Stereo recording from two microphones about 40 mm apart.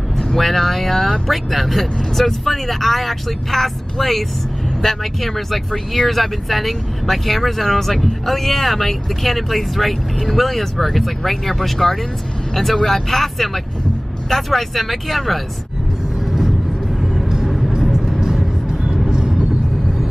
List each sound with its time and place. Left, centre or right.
0.3 s speech: centre
16.3 s vehicle: centre
18.2 s music: centre
19.0 s vehicle: centre